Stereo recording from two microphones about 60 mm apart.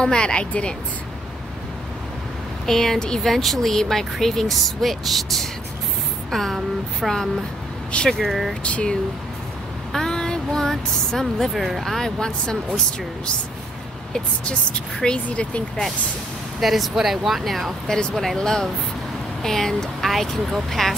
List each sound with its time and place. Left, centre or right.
0.0 s a woman's voice: centre
2.6 s a woman's voice: centre
8.2 s speech: centre
8.6 s speech: left
9.9 s speech: centre
15.2 s speech: left
16.5 s a woman's voice: centre